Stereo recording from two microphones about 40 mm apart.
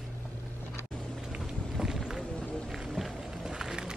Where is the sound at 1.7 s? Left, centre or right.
Centre.